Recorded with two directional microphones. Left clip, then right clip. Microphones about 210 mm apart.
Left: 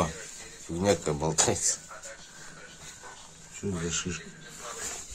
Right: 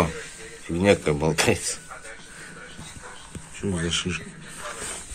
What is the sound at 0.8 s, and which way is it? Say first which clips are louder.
Speech: right 6 dB; centre (ahead or behind).